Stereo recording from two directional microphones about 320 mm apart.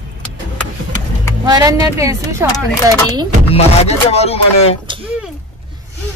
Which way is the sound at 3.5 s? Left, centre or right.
Centre.